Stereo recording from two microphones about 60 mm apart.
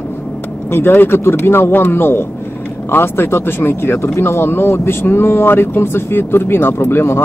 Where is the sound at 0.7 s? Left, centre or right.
Left.